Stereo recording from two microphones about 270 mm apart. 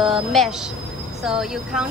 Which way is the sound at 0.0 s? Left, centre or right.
Centre.